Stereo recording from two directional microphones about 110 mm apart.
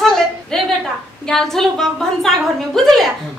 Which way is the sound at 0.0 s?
5° left (ahead or behind).